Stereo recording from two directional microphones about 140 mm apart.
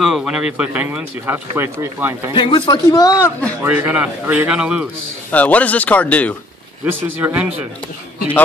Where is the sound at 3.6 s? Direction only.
10° right (ahead or behind).